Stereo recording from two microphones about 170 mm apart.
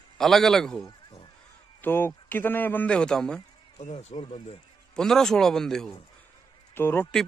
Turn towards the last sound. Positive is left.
turn(degrees=15)  # may be behind; listen again after turning